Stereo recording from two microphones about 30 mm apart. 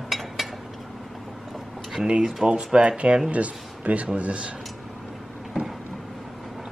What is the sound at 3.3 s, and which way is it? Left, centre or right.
Speech, right.